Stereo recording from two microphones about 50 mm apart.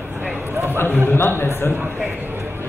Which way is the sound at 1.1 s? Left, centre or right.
Left.